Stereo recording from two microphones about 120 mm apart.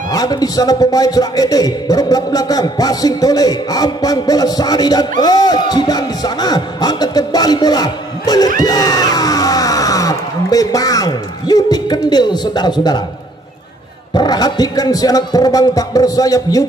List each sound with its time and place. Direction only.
0.1 s a man's voice: 30° left (ahead or behind)
14.1 s a man's voice: 35° left (ahead or behind)